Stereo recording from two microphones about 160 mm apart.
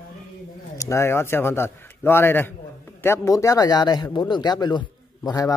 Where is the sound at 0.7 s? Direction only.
20° left (ahead or behind).